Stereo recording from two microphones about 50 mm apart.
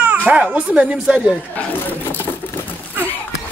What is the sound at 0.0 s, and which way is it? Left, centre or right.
Speech, right.